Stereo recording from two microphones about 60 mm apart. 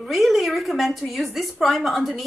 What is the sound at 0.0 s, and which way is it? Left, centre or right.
A woman's voice, centre.